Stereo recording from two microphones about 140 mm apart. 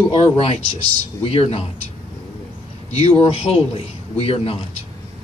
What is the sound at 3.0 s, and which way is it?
A man's voice, 45° left (ahead or behind).